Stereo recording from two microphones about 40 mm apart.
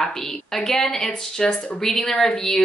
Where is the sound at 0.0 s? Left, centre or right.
Centre.